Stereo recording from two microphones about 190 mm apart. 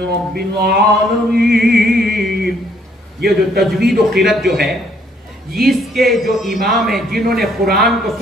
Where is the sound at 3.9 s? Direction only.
Centre (ahead or behind).